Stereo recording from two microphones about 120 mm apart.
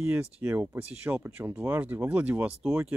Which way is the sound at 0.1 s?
15° right (ahead or behind).